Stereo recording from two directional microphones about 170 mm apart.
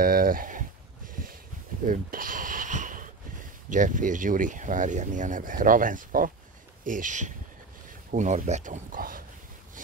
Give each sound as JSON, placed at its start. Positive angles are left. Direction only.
{"t": 0.0, "sound": "speech", "side_deg": -55}
{"t": 1.2, "sound": "a sound", "side_deg": -55}
{"t": 3.7, "sound": "speech", "side_deg": -50}